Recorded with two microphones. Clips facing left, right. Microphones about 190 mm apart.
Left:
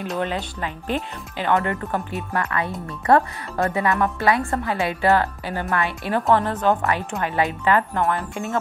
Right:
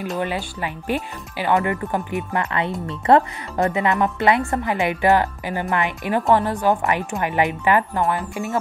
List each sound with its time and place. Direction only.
0.0 s speech: 5° right (ahead or behind)
2.0 s speech: 20° right (ahead or behind)